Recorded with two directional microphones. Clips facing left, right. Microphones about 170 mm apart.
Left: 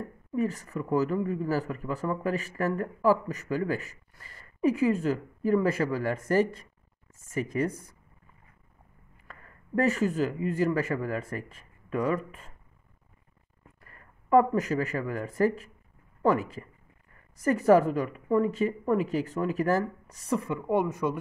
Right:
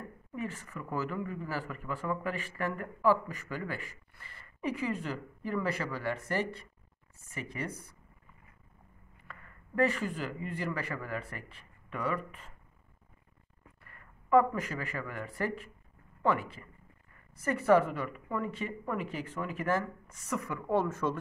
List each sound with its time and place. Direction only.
0.4 s speech: 40° left (ahead or behind)
9.3 s speech: 40° left (ahead or behind)
13.8 s speech: 40° left (ahead or behind); by 21.2 s 15° left (ahead or behind)